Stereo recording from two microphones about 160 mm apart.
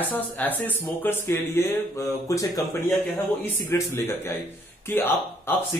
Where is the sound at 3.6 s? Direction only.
15° left (ahead or behind).